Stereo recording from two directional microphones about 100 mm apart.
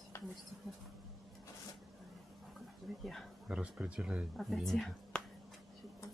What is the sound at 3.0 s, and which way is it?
Speech, 5° left (ahead or behind).